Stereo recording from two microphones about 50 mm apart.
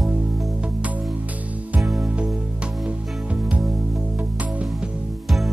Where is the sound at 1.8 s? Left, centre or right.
Centre.